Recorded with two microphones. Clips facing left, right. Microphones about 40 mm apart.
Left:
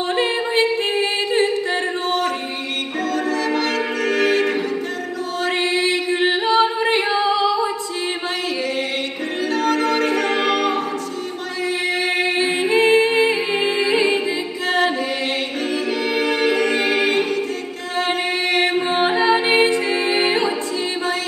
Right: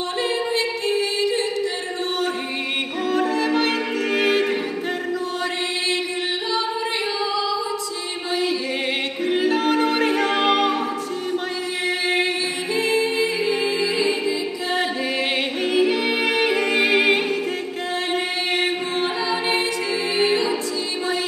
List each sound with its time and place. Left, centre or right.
0.2 s music: left
3.1 s music: centre
5.6 s a capella: left
9.4 s music: centre
12.4 s a capella: left
15.6 s a capella: centre
18.9 s music: left